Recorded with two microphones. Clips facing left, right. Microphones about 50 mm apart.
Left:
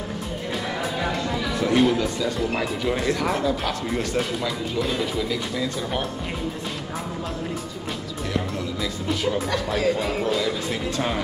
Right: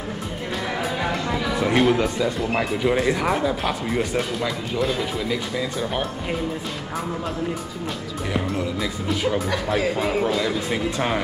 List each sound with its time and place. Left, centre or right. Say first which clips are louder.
1.0 s a sound: right 1 dB; centre
1.9 s speech: right 3 dB; right
5.3 s speech: right 1 dB; centre
9.1 s speech: right 1 dB; centre